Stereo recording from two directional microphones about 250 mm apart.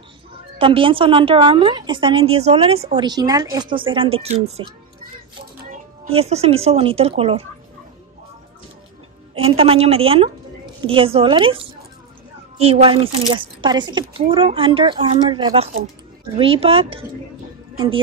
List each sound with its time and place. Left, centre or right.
0.6 s a woman's voice: right
6.0 s a woman's voice: right
9.3 s a woman's voice: right